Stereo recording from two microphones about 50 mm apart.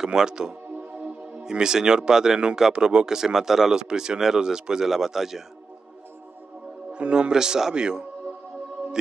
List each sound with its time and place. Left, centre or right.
0.0 s speech: centre
6.9 s speech: right